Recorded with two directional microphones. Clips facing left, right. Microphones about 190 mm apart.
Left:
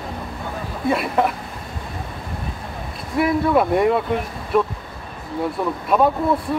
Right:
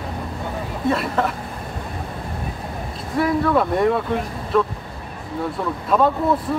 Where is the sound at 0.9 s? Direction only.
10° left (ahead or behind).